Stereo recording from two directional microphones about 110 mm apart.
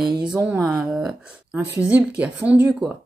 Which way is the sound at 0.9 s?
5° right (ahead or behind).